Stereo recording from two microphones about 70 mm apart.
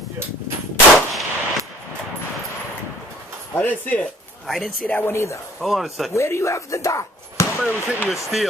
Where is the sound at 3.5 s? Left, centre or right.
Left.